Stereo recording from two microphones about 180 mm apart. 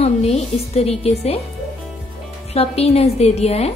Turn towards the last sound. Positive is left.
turn(degrees=35)  # may be behind; listen again after turning